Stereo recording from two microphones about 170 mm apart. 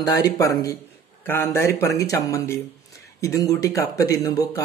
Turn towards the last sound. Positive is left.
turn(degrees=20)  # may be behind; listen again after turning